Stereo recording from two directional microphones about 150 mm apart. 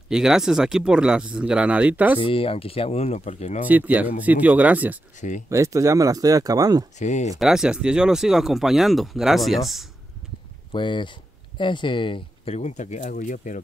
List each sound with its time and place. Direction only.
0.1 s speech: 5° right (ahead or behind)
2.1 s speech: 35° left (ahead or behind)
3.6 s speech: 10° right (ahead or behind)
5.5 s speech: 20° right (ahead or behind)
7.0 s speech: 50° left (ahead or behind)
7.3 s speech: 5° right (ahead or behind)
10.7 s speech: 30° left (ahead or behind); by 13.6 s 60° left (ahead or behind)